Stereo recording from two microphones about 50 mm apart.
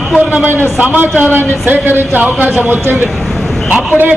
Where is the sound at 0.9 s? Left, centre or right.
Right.